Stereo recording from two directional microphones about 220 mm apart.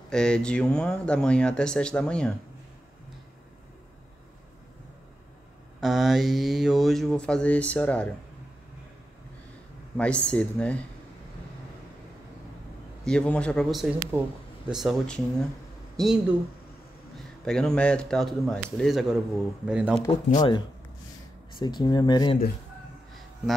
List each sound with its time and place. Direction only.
0.1 s speech: 5° left (ahead or behind)
5.8 s speech: centre (ahead or behind)
9.9 s speech: 5° left (ahead or behind)
13.0 s speech: 5° left (ahead or behind)
17.5 s speech: 5° left (ahead or behind)
20.3 s speech: 20° left (ahead or behind)